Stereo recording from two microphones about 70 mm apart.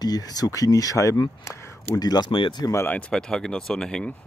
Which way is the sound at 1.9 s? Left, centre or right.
Left.